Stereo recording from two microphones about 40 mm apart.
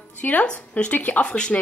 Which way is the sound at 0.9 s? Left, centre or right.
Left.